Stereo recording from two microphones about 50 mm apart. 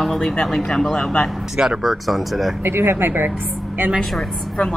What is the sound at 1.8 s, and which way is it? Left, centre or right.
Speech, centre.